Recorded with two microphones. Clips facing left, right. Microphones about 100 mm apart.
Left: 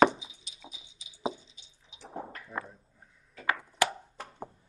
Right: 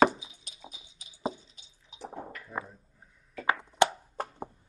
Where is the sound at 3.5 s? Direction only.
25° right (ahead or behind).